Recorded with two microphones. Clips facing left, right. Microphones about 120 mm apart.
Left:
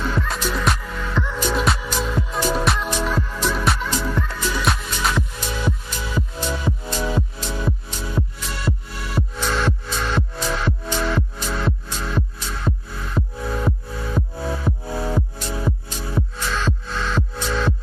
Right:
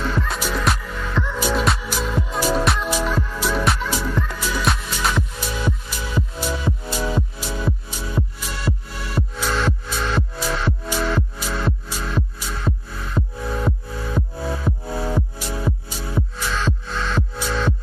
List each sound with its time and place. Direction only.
0.3 s music: centre (ahead or behind)